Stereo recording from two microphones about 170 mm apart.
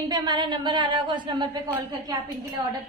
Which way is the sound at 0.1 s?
25° right (ahead or behind).